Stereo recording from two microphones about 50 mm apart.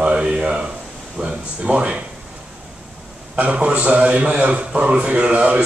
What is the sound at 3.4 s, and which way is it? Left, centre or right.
Speech, right.